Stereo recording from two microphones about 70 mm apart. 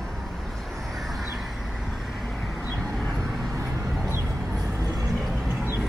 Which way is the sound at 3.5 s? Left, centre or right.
Right.